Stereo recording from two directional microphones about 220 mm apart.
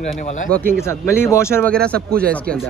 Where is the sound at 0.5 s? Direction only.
5° left (ahead or behind).